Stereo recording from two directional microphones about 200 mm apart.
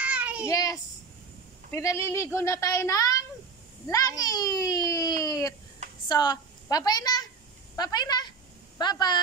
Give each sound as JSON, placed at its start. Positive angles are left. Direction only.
{"t": 0.0, "sound": "child singing", "side_deg": -5}
{"t": 0.5, "sound": "speech", "side_deg": 15}
{"t": 4.2, "sound": "baby cry", "side_deg": 20}
{"t": 6.0, "sound": "a woman's voice", "side_deg": 20}
{"t": 7.7, "sound": "a sound", "side_deg": 20}